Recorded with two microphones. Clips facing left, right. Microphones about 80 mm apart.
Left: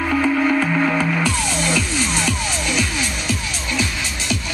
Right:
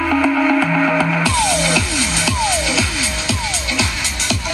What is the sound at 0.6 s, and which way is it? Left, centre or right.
Music, right.